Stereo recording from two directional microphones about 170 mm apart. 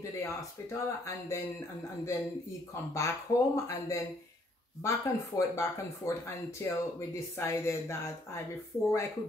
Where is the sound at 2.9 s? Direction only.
15° left (ahead or behind).